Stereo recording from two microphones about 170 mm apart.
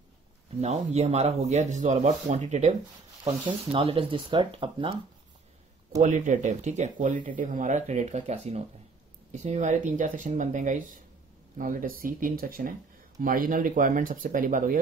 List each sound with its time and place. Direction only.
0.6 s speech: 40° right (ahead or behind)
3.3 s speech: 30° right (ahead or behind)
6.0 s speech: 50° right (ahead or behind)